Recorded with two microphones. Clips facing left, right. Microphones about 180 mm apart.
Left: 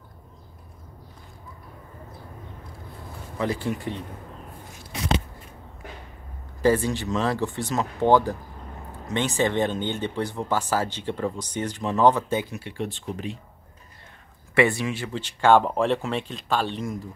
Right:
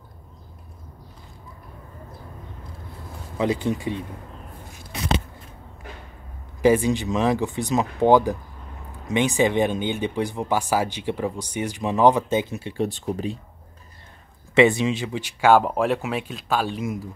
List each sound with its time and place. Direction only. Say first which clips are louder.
3.3 s speech: right 4 dB; 20° right (ahead or behind)
6.6 s speech: right 3 dB; 15° right (ahead or behind)
12.8 s speech: right 6 dB; 40° right (ahead or behind)
14.5 s speech: right 5 dB; 20° right (ahead or behind)